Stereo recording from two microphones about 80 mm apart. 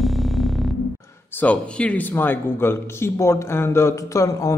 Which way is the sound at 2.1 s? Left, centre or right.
Left.